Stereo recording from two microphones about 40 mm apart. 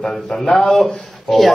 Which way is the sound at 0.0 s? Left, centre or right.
Centre.